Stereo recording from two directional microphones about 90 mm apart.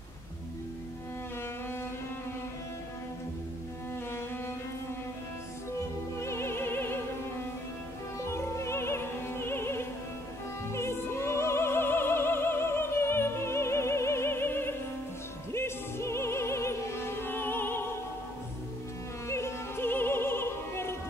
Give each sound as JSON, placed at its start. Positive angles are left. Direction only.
{"t": 6.1, "sound": "music", "side_deg": 30}
{"t": 8.3, "sound": "music", "side_deg": 30}
{"t": 10.7, "sound": "opera", "side_deg": 30}
{"t": 15.5, "sound": "music", "side_deg": 30}
{"t": 19.2, "sound": "opera", "side_deg": 30}